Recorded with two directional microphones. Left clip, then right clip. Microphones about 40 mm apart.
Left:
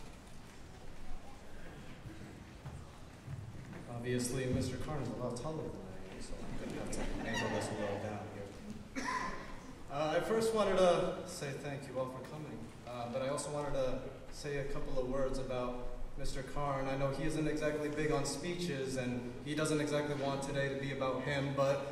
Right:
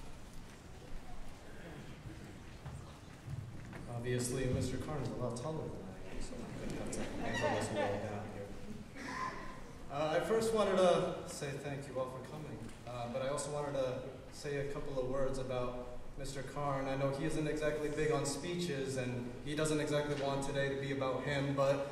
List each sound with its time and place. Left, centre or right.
4.0 s a man's voice: centre
7.2 s speech: centre
9.8 s a man's voice: centre